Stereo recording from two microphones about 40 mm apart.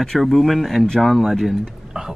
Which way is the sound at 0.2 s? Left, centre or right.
Centre.